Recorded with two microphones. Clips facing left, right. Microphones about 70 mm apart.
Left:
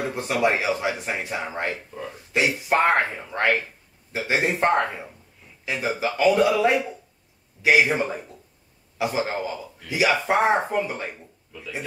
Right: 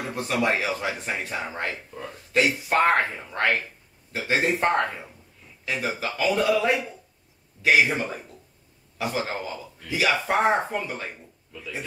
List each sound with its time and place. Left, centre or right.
0.1 s a man's voice: centre